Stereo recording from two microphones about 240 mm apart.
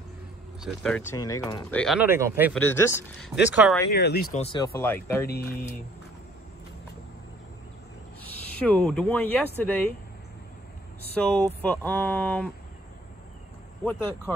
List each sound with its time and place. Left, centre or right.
0.6 s speech: centre
1.8 s speech: centre
2.0 s speech: centre
2.5 s speech: centre
3.9 s speech: left
4.4 s speech: centre
5.3 s speech: left
8.5 s speech: centre
11.1 s speech: centre